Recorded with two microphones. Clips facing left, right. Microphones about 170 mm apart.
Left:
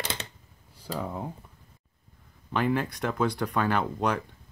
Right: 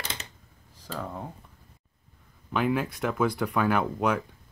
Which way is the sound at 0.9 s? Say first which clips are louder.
Left 2 dB; 10° left (ahead or behind).